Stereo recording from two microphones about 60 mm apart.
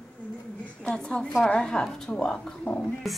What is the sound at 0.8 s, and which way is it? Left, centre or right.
Speech, centre.